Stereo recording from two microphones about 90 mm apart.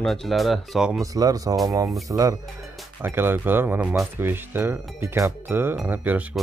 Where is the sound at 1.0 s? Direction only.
40° right (ahead or behind).